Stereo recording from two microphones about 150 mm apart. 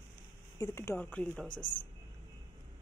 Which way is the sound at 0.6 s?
20° left (ahead or behind).